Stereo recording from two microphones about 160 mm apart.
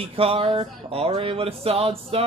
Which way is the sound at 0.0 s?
35° right (ahead or behind).